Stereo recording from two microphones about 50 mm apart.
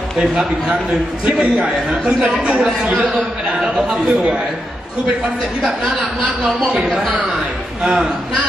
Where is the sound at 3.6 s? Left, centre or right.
Centre.